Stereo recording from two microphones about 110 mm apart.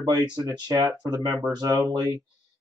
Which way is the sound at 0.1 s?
35° right (ahead or behind).